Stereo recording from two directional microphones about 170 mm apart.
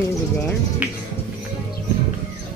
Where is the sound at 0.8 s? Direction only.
10° right (ahead or behind).